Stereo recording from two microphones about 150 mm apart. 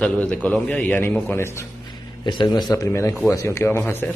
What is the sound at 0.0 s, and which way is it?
A man's voice, 10° left (ahead or behind).